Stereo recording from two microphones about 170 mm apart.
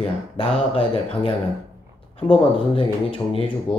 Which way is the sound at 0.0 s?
35° left (ahead or behind).